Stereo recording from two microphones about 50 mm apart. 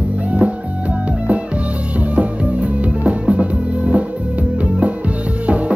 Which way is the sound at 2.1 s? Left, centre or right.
Right.